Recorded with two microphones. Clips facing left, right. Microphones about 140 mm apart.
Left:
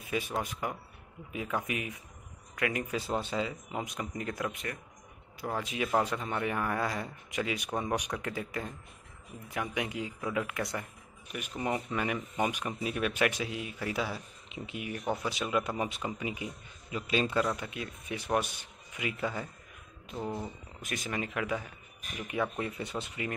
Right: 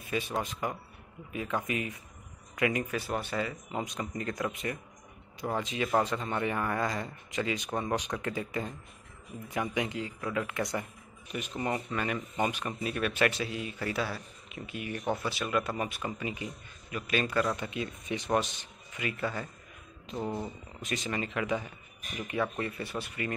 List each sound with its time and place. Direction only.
0.1 s speech: 10° left (ahead or behind)
2.9 s speech: 20° left (ahead or behind)
3.7 s speech: 5° left (ahead or behind)
14.9 s speech: 5° left (ahead or behind)
15.2 s a man's voice: 15° left (ahead or behind)
17.5 s speech: centre (ahead or behind)
20.1 s speech: centre (ahead or behind); by 23.3 s 20° left (ahead or behind)